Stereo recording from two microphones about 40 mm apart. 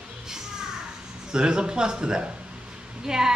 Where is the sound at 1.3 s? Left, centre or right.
Right.